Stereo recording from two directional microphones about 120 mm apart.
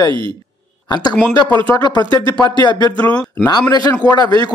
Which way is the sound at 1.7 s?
35° left (ahead or behind).